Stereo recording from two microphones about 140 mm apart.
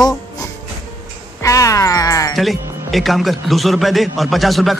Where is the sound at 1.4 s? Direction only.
20° left (ahead or behind).